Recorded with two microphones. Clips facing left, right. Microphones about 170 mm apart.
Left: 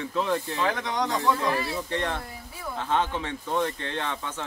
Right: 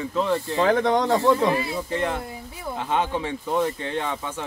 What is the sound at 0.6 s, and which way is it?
Speech, 55° right (ahead or behind).